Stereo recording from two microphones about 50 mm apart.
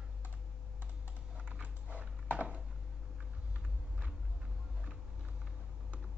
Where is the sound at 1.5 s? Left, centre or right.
Right.